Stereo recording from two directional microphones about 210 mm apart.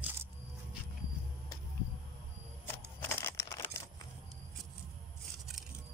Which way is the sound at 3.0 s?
10° left (ahead or behind).